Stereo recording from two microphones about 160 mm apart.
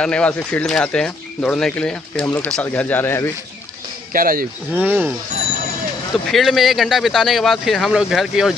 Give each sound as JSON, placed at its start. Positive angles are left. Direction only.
{"t": 0.0, "sound": "speech", "side_deg": 5}
{"t": 4.1, "sound": "speech", "side_deg": -60}
{"t": 4.7, "sound": "speech", "side_deg": -10}
{"t": 6.3, "sound": "speech", "side_deg": 0}